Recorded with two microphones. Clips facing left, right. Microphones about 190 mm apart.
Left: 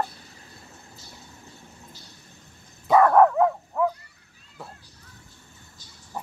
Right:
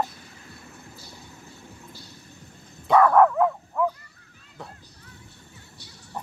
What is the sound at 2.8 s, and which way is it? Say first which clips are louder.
Dog: even; 5° left (ahead or behind).